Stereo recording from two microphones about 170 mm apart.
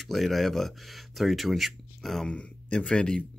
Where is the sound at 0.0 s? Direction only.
Centre (ahead or behind).